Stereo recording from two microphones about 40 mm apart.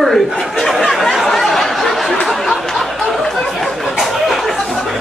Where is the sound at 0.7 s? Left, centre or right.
Centre.